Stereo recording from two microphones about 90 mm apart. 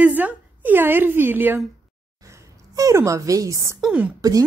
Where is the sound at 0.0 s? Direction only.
15° right (ahead or behind).